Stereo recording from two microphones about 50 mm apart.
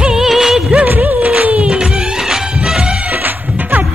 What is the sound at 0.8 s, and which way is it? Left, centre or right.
Music of bollywood, right.